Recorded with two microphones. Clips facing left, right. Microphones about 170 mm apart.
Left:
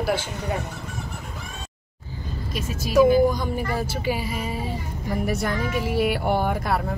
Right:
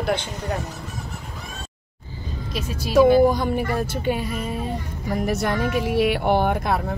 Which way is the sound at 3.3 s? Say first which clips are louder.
Right 4 dB; 60° right (ahead or behind).